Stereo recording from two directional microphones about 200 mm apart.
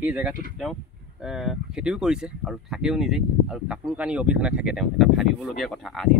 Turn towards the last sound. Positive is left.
turn(degrees=0)  # may be behind; listen again after turning